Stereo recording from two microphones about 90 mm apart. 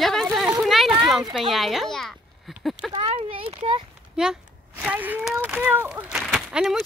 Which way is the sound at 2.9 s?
80° right.